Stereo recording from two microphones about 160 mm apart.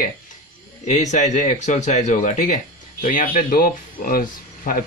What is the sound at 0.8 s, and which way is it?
Speech, 50° left (ahead or behind).